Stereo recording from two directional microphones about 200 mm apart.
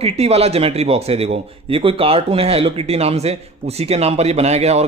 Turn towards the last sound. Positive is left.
turn(degrees=-35)  # may be behind; listen again after turning